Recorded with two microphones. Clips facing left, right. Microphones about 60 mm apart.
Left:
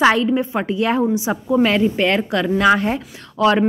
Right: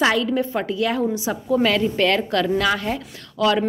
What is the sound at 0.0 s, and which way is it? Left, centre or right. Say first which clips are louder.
Speech: left 4 dB; left.